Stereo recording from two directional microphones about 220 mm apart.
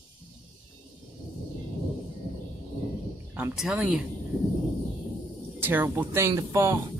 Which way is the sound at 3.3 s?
5° right (ahead or behind).